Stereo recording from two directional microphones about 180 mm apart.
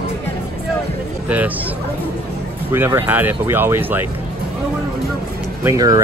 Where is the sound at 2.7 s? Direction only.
15° right (ahead or behind).